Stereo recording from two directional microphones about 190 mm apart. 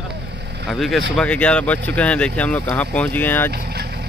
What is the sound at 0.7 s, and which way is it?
Speech, centre (ahead or behind).